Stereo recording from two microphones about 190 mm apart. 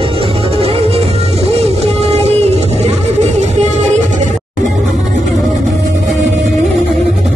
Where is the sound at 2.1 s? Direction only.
35° right (ahead or behind).